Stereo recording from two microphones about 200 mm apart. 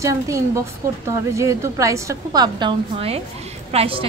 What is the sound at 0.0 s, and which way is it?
A woman's voice, 15° right (ahead or behind).